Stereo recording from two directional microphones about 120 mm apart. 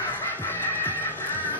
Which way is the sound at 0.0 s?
15° left (ahead or behind).